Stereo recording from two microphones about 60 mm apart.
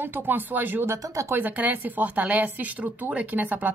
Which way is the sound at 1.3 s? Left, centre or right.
Right.